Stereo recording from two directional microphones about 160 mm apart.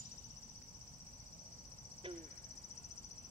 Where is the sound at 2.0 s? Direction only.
35° right (ahead or behind).